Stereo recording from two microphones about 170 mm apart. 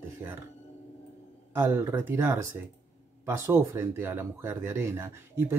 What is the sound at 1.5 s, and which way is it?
Speech, 15° right (ahead or behind).